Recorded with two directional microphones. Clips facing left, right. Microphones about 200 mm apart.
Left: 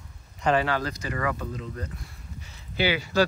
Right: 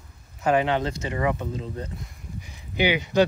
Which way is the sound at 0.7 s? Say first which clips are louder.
Right 3 dB; 25° right (ahead or behind).